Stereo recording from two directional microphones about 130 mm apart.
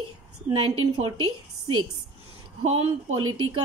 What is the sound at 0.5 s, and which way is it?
Speech, 45° right (ahead or behind).